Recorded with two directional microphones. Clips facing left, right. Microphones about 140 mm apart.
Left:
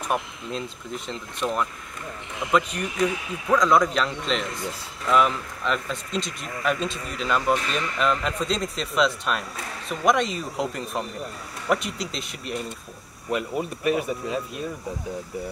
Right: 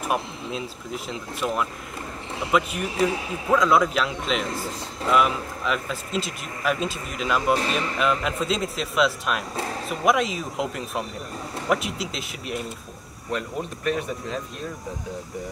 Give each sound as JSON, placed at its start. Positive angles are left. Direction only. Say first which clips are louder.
{"t": 0.0, "sound": "speech", "louder": "right 1 dB", "side_deg": -5}
{"t": 2.9, "sound": "speech", "louder": "right 2 dB", "side_deg": -30}
{"t": 3.5, "sound": "speech", "louder": "even", "side_deg": -5}
{"t": 4.5, "sound": "speech", "louder": "right 2 dB", "side_deg": -30}
{"t": 5.1, "sound": "speech", "louder": "even", "side_deg": -5}